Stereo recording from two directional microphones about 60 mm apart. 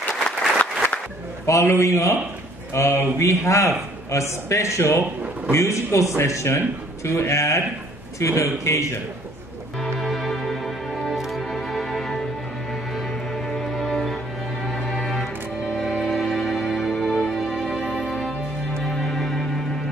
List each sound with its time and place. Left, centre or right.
1.4 s a man's voice: left
9.8 s music: centre
13.7 s music: centre